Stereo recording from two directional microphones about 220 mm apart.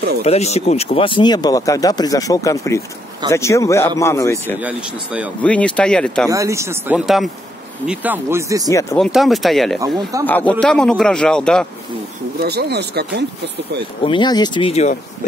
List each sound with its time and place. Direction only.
0.2 s speech: 30° left (ahead or behind); by 4.6 s 10° left (ahead or behind)
4.6 s speech: 5° right (ahead or behind)
5.4 s speech: 5° left (ahead or behind)
6.2 s speech: 15° right (ahead or behind)
8.9 s speech: centre (ahead or behind)
9.8 s speech: 15° right (ahead or behind)
10.2 s speech: 10° left (ahead or behind)
12.4 s speech: 45° right (ahead or behind)
14.0 s speech: 20° left (ahead or behind)